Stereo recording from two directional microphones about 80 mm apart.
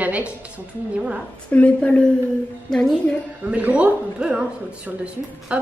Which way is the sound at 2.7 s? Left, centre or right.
Centre.